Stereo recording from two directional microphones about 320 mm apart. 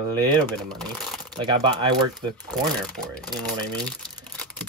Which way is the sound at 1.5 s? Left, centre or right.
Centre.